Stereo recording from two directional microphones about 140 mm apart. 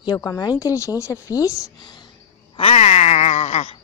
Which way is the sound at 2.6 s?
45° left (ahead or behind).